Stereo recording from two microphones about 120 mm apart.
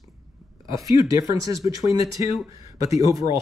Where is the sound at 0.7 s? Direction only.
30° right (ahead or behind).